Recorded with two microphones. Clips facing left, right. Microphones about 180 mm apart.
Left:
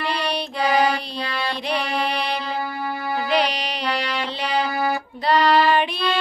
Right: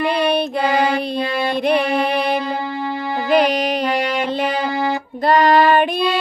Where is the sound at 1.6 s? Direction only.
55° right (ahead or behind).